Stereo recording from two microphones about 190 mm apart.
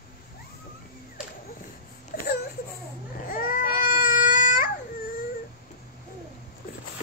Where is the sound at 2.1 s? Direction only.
50° left (ahead or behind).